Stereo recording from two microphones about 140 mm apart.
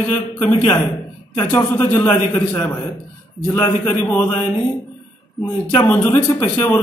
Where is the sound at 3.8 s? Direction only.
10° left (ahead or behind).